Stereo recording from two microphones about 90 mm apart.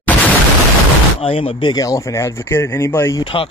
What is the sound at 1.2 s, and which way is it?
Speech, 90° left.